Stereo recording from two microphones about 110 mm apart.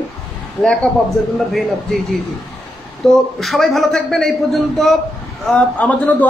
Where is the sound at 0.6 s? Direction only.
5° left (ahead or behind).